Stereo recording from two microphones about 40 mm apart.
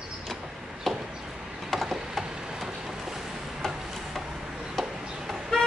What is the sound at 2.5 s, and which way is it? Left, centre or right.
Vehicle, centre.